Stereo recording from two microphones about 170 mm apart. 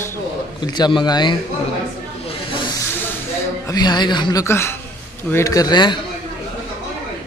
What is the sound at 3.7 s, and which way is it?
A woman's voice, 25° left (ahead or behind).